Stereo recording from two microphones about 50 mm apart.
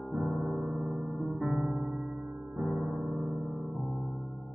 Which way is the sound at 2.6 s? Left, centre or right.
Centre.